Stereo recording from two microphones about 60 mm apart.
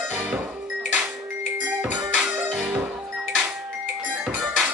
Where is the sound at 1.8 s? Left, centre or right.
Centre.